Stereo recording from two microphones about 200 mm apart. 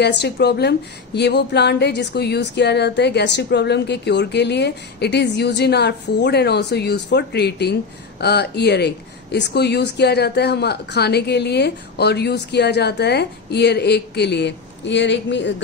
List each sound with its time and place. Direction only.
0.0 s speech: 55° left (ahead or behind)